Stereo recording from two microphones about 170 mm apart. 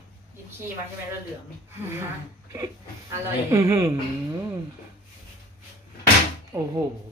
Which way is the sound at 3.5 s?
15° right (ahead or behind).